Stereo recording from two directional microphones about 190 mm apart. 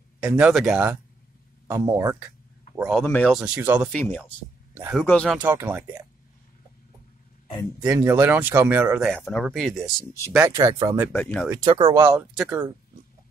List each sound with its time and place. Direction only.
0.2 s speech: 5° right (ahead or behind)
2.8 s speech: centre (ahead or behind)
3.3 s speech: 5° right (ahead or behind)
3.9 s speech: 5° left (ahead or behind)
5.4 s speech: 10° right (ahead or behind)
7.8 s speech: 10° right (ahead or behind)
9.1 s speech: centre (ahead or behind)
10.5 s speech: 20° right (ahead or behind)
11.1 s speech: 5° left (ahead or behind)
11.6 s speech: 20° right (ahead or behind)
12.0 s speech: 5° right (ahead or behind)